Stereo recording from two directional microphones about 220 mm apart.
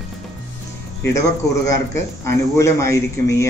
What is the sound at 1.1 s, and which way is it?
A man's voice, 15° left (ahead or behind).